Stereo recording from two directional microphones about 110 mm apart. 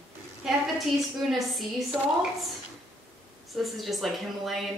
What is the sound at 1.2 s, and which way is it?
Speech, centre (ahead or behind).